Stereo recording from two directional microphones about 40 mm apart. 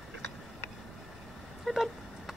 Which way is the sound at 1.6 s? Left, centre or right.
Centre.